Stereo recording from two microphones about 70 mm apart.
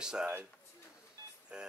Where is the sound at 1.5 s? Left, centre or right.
Centre.